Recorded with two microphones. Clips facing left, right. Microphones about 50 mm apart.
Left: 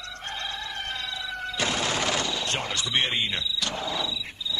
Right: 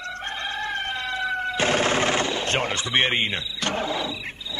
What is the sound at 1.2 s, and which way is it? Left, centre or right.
Music, right.